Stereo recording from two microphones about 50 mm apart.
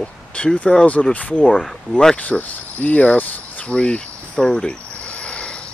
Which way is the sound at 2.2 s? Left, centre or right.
Left.